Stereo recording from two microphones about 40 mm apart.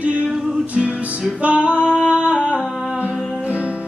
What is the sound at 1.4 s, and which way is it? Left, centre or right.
Music, right.